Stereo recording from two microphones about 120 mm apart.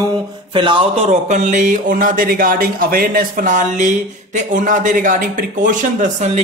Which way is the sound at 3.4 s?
90° right.